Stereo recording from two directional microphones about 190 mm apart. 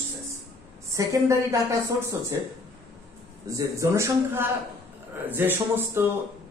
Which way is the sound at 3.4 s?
15° right (ahead or behind).